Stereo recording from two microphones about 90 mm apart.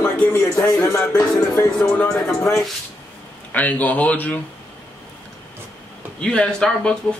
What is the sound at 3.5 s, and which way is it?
Speech, 15° left (ahead or behind).